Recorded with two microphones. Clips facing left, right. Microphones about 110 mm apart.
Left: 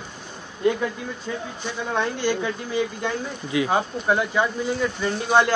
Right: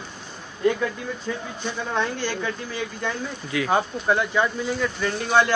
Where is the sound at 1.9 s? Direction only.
15° left (ahead or behind).